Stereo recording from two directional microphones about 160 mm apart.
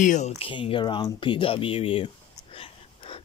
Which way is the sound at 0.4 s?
35° left (ahead or behind).